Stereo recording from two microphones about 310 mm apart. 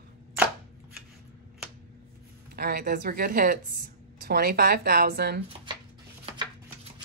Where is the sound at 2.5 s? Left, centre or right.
Right.